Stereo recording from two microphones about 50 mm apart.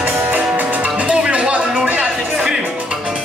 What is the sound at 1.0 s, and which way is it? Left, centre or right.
Music, centre.